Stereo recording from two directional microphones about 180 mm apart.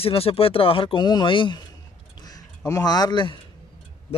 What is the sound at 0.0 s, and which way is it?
Speech, 30° left (ahead or behind).